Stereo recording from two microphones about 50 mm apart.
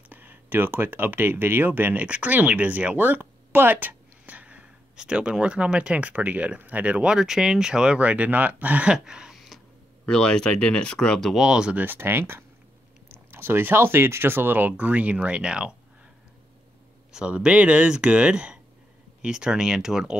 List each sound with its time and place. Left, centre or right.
0.1 s speech: right
2.0 s speech: right
3.0 s a sound: right
4.9 s speech: centre
7.2 s speech: centre
8.0 s speech: right
8.8 s speech: centre
9.3 s a sound: centre
10.0 s speech: centre
11.3 s speech: centre
11.7 s speech: right
14.7 s speech: right
17.3 s speech: right